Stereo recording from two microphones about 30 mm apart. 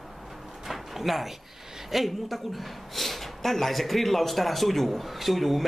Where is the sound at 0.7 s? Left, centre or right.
Centre.